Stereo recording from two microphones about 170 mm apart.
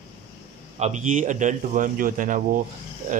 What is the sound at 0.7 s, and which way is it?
A man's voice, 40° right (ahead or behind).